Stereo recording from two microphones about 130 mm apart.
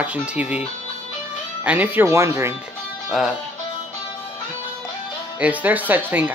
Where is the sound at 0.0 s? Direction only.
10° right (ahead or behind).